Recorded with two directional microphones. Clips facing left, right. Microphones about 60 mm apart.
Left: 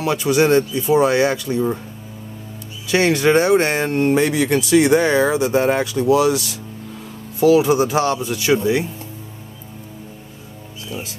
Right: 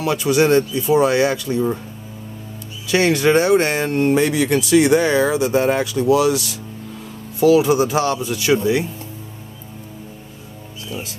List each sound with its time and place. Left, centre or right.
0.0 s speech: left
2.9 s speech: left